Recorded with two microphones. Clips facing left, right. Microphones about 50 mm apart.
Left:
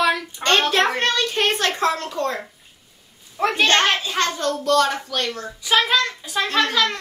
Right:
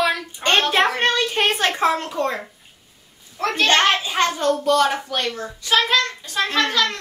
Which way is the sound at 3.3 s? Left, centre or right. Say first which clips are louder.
Left 2 dB; centre.